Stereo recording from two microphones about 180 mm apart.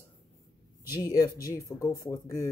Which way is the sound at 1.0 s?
20° left (ahead or behind).